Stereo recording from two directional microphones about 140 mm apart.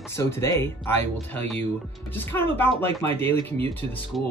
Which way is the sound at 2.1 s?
15° left (ahead or behind).